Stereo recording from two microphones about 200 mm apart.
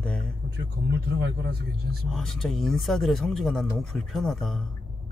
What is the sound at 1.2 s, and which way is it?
Speech, 55° right (ahead or behind).